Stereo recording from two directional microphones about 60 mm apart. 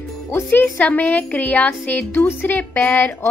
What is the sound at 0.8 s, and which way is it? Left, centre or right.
Speech, left.